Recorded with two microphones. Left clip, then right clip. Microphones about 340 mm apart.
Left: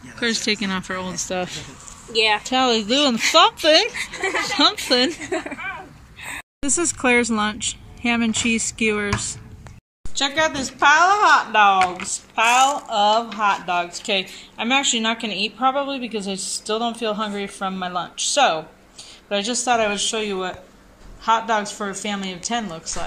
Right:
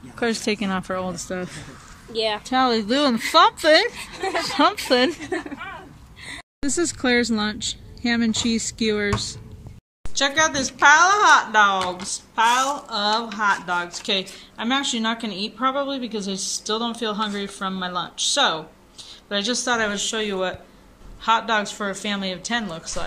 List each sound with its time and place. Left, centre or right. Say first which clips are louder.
0.1 s speech: left 2 dB; centre
2.1 s speech: left 6 dB; left
2.4 s a woman's voice: left 1 dB; centre
10.1 s speech: right 1 dB; centre